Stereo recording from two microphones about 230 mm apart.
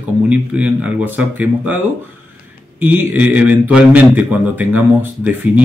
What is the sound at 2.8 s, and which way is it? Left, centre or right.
Speech, centre.